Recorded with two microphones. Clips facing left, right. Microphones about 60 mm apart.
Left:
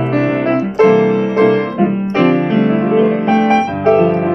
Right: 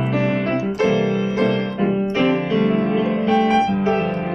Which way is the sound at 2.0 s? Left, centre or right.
Left.